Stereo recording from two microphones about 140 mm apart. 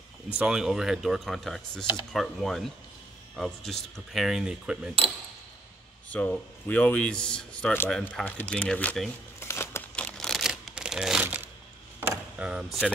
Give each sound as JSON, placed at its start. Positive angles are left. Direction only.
{"t": 0.4, "sound": "speech", "side_deg": -5}
{"t": 6.0, "sound": "speech", "side_deg": 10}
{"t": 9.4, "sound": "crumpling", "side_deg": 20}
{"t": 10.1, "sound": "a sound", "side_deg": 0}
{"t": 12.4, "sound": "speech", "side_deg": -5}